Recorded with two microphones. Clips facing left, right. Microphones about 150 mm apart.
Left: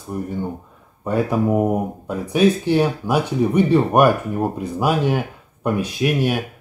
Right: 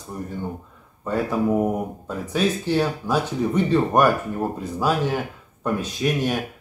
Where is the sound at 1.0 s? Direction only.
15° left (ahead or behind).